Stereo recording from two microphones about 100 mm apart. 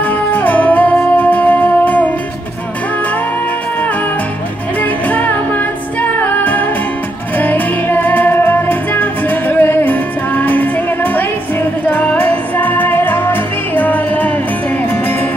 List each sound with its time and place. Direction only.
0.3 s music: 15° left (ahead or behind)
6.0 s music: 20° left (ahead or behind)
11.9 s music: 15° left (ahead or behind)